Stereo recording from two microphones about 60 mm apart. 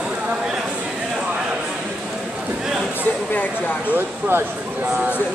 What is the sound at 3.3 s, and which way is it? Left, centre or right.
Speech, left.